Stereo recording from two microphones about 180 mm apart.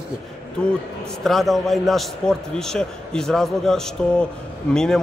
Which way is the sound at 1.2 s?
Centre (ahead or behind).